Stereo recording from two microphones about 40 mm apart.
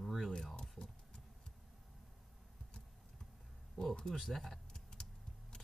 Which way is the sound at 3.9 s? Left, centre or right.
Centre.